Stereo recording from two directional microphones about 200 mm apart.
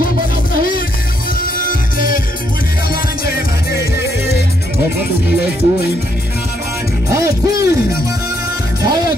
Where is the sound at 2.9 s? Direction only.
50° left (ahead or behind).